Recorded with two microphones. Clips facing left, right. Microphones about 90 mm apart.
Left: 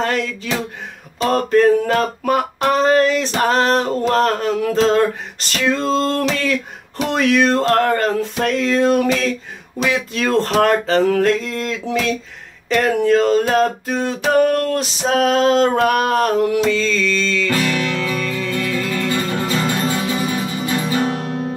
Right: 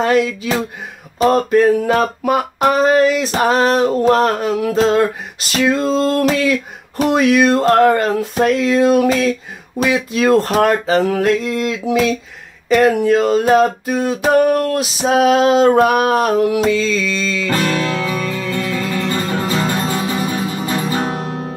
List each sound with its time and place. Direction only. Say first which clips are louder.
0.0 s speech: right 6 dB; 10° right (ahead or behind)
1.2 s male singing: right 2 dB; 10° right (ahead or behind)
17.5 s music: right 5 dB; 35° right (ahead or behind)
17.8 s music: right 2 dB; 20° right (ahead or behind)
18.9 s music: right 1 dB; 30° right (ahead or behind)